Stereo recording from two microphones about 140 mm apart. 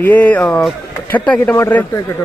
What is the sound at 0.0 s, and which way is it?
A man's voice, 10° left (ahead or behind).